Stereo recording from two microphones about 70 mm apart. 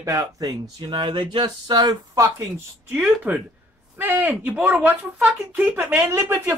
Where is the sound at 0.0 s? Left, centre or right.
Right.